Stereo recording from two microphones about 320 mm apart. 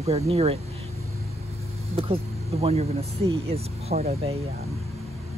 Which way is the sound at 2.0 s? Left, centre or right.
Centre.